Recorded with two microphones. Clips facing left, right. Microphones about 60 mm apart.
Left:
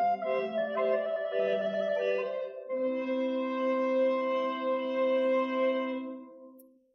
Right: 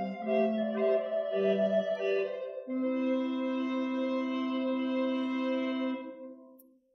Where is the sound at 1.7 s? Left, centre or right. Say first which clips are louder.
Right 1 dB; left.